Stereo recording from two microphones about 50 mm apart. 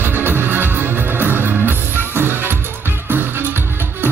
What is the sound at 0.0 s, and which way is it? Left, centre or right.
Music, right.